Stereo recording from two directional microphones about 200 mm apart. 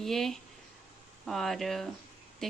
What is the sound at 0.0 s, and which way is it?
Speech, centre (ahead or behind).